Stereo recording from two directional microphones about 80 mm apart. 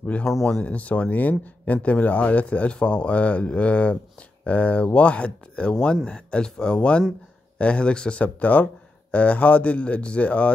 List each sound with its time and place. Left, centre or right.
0.0 s speech: centre